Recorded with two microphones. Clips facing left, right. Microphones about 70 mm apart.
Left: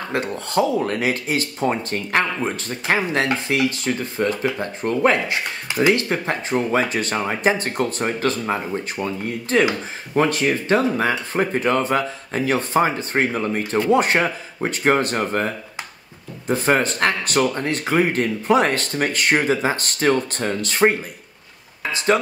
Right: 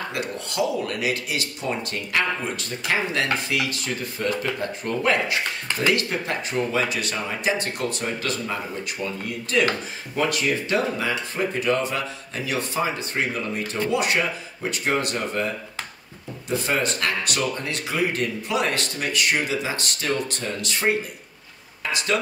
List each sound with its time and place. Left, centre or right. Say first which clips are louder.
0.1 s speech: left 7 dB; left
5.7 s speech: left 5 dB; centre
5.9 s speech: left 3 dB; left
21.9 s speech: left 6 dB; left